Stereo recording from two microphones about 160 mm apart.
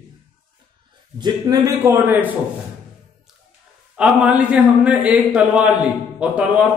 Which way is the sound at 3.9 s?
5° right (ahead or behind).